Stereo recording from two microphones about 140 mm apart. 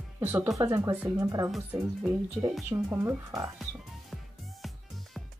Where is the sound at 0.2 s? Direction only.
15° right (ahead or behind).